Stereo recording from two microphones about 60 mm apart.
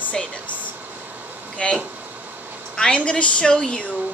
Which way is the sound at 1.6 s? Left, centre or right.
Centre.